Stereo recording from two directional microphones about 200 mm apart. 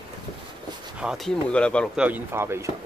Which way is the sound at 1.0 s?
Centre (ahead or behind).